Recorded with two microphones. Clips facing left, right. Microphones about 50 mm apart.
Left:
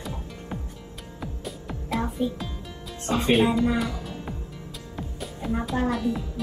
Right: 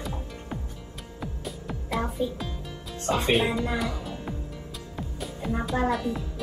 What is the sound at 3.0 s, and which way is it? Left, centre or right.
Speech, right.